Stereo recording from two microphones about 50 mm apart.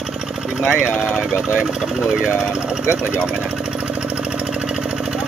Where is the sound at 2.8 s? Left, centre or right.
Right.